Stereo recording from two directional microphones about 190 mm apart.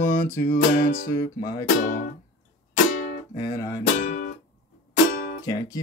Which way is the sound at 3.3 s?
20° left (ahead or behind).